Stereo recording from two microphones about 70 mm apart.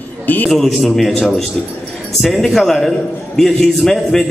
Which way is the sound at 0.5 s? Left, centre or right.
Centre.